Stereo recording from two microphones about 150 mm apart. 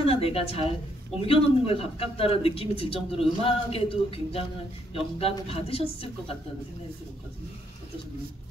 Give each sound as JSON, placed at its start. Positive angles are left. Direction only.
{"t": 0.0, "sound": "a man's voice", "side_deg": 40}